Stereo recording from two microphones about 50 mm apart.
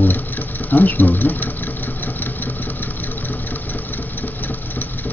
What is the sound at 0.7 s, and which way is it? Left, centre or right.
Speech, left.